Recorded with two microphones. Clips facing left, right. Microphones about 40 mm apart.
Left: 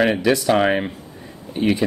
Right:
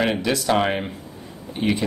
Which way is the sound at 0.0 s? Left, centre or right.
Centre.